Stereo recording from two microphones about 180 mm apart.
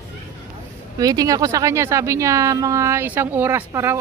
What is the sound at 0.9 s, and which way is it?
Speech, 20° right (ahead or behind).